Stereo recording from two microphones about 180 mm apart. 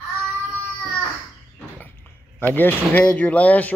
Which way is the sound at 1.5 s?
10° left (ahead or behind).